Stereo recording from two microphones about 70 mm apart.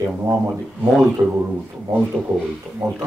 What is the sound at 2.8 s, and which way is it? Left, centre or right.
Speech, right.